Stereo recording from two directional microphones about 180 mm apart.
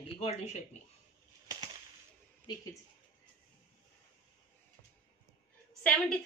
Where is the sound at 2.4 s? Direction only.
20° left (ahead or behind).